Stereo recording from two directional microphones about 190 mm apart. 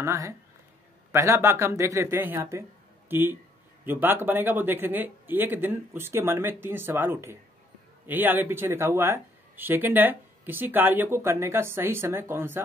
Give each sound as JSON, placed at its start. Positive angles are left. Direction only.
{"t": 0.0, "sound": "speech", "side_deg": -15}